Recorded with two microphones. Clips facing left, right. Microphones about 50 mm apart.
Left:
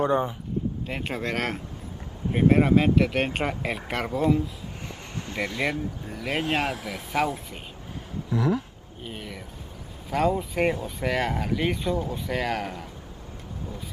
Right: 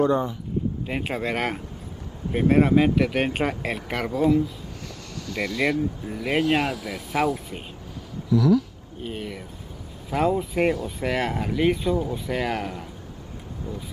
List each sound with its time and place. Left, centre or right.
0.0 s speech: left
0.8 s speech: centre
2.3 s speech: centre
5.2 s speech: left
6.0 s speech: centre
6.6 s speech: left
8.3 s speech: left
9.0 s a sound: centre
10.0 s speech: centre